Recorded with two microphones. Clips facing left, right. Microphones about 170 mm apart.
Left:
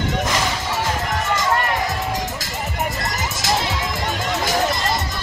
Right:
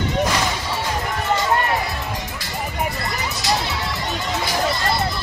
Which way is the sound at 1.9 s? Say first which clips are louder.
Left 4 dB; 45° left (ahead or behind).